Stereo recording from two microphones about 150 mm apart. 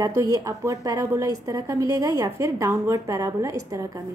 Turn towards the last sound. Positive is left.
turn(degrees=-20)  # may be behind; listen again after turning